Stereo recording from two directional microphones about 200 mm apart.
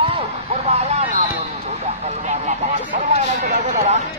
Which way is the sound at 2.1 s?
35° right (ahead or behind).